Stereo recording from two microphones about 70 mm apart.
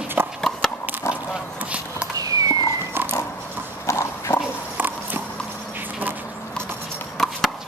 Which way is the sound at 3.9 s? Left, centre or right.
Left.